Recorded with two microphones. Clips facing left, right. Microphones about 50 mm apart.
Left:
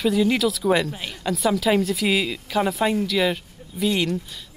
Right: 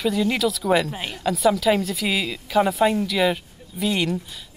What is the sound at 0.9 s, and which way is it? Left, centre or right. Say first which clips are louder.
Speech: right 2 dB; centre.